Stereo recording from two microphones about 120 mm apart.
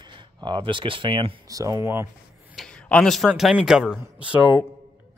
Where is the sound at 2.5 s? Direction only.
5° left (ahead or behind).